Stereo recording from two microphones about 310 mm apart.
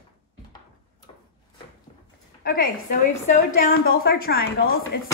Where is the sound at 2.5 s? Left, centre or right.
Left.